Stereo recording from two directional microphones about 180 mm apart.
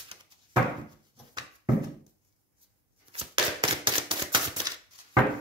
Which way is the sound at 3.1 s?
30° right (ahead or behind).